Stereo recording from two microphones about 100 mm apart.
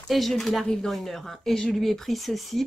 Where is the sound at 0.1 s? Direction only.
Centre (ahead or behind).